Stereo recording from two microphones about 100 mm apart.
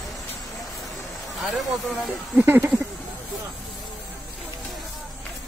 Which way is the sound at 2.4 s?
25° right (ahead or behind).